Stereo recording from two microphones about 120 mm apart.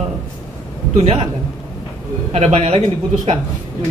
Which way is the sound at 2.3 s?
60° right (ahead or behind).